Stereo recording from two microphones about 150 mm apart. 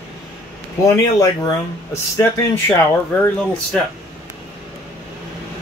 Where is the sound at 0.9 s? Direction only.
20° left (ahead or behind).